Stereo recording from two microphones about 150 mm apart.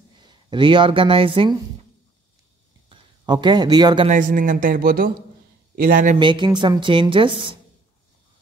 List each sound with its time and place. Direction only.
0.2 s speech: 30° right (ahead or behind)
2.9 s speech: 30° right (ahead or behind)
4.1 s speech: 60° right (ahead or behind)
6.1 s a woman's voice: 30° right (ahead or behind)